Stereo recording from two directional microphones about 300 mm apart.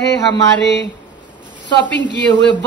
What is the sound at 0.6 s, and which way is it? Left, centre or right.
Speech, left.